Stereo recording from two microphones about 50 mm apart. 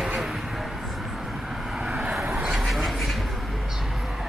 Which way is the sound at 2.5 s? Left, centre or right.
Centre.